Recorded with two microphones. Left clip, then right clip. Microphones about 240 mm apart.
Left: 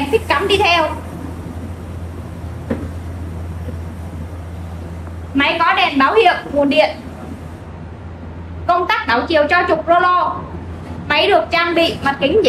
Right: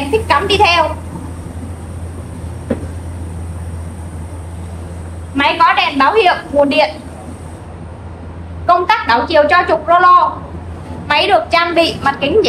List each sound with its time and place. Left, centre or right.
0.0 s a sound: centre
5.3 s a woman's voice: centre
8.6 s a woman's voice: centre